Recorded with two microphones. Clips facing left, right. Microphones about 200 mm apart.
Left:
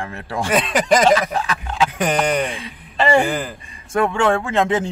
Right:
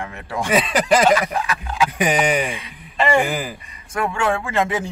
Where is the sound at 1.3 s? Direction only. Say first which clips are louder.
Left 1 dB; 30° left (ahead or behind).